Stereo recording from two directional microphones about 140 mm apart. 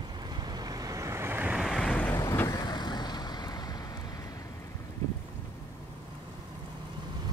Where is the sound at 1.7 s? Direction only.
5° left (ahead or behind).